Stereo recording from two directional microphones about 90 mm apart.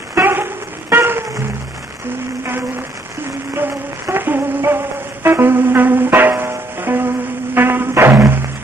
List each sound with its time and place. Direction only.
0.1 s music: 25° right (ahead or behind)
3.5 s a sound: 25° right (ahead or behind)
7.5 s music: 25° right (ahead or behind)